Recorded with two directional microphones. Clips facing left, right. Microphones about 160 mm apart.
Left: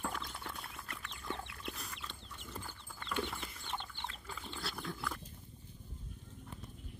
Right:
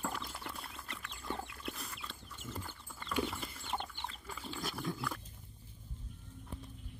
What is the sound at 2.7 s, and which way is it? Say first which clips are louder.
Dog: right 2 dB; 5° right (ahead or behind).